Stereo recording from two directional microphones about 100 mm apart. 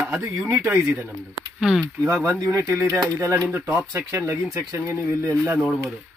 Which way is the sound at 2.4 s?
35° right (ahead or behind).